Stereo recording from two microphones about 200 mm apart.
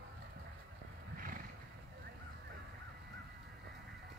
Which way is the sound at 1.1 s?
45° right (ahead or behind).